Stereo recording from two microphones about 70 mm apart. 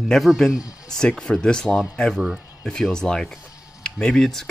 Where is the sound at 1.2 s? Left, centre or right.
Centre.